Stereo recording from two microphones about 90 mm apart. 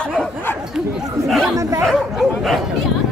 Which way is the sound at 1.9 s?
Centre (ahead or behind).